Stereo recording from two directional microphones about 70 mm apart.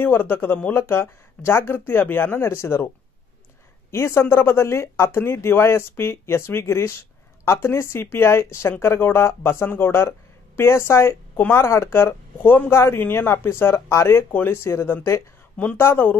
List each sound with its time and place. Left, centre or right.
0.0 s speech: left
3.9 s speech: left